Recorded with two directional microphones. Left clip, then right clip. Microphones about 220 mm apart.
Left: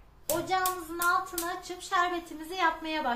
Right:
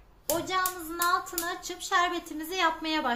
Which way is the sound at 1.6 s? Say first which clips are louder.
Right 2 dB; 40° right (ahead or behind).